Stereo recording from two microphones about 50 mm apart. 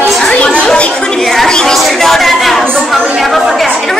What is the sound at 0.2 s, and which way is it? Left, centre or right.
Chatter, left.